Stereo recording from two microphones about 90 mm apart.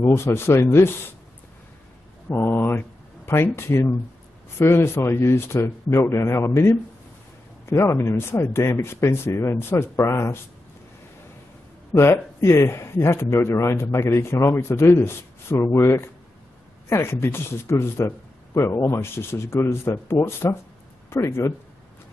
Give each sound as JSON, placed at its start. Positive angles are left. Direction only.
{"t": 0.0, "sound": "speech", "side_deg": 30}
{"t": 2.2, "sound": "speech", "side_deg": 25}
{"t": 11.9, "sound": "speech", "side_deg": 30}